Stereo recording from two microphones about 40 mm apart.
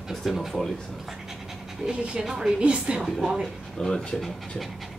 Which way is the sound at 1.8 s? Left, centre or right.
Right.